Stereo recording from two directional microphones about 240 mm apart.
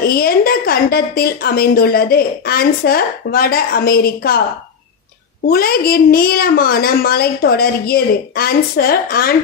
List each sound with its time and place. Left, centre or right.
0.0 s a woman's voice: left
5.5 s a woman's voice: left